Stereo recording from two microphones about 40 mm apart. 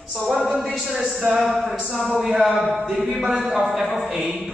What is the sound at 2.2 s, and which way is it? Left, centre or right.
A man's voice, centre.